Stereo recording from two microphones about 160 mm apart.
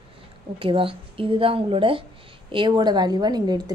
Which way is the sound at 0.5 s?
35° right (ahead or behind).